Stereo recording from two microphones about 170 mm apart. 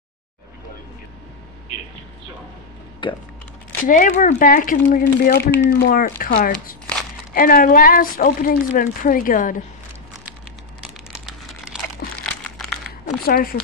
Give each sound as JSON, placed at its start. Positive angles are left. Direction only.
{"t": 3.0, "sound": "speech", "side_deg": 25}
{"t": 3.8, "sound": "a woman's voice", "side_deg": 50}
{"t": 10.8, "sound": "crumpling", "side_deg": -5}
{"t": 13.2, "sound": "a woman's voice", "side_deg": 65}